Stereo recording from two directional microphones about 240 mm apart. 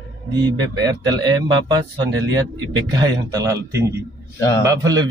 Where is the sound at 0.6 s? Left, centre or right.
Centre.